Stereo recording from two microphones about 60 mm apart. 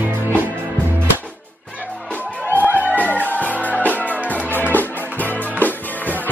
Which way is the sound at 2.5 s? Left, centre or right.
Right.